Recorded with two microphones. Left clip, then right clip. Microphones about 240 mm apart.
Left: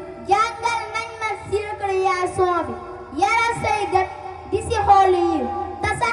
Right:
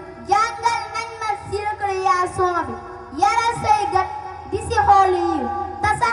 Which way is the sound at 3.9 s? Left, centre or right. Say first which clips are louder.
Even; right.